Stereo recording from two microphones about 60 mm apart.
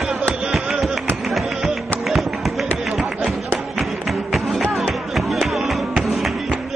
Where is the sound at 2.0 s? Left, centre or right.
Centre.